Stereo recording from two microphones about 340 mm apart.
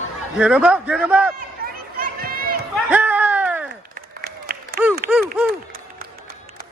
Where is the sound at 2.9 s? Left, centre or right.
Centre.